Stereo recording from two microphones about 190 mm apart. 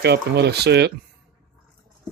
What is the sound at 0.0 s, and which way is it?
Speech, 60° right (ahead or behind).